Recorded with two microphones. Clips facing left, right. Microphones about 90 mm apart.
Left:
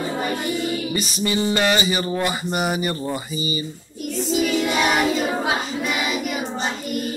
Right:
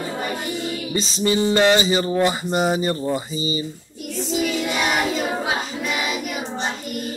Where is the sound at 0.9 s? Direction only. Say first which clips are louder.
Right 2 dB; 25° right (ahead or behind).